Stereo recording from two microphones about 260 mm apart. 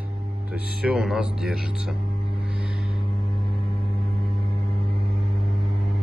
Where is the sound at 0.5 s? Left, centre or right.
Centre.